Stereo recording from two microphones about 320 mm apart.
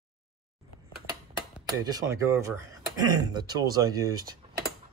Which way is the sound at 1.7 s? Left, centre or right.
Centre.